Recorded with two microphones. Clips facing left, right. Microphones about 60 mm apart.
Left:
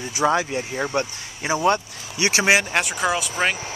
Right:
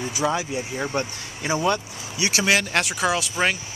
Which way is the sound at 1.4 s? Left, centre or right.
Centre.